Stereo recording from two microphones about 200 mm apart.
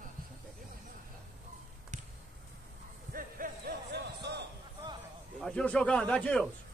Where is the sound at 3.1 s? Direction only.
45° right (ahead or behind).